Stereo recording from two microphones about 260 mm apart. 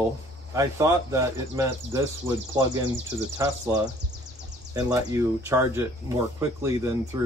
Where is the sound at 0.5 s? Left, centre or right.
Centre.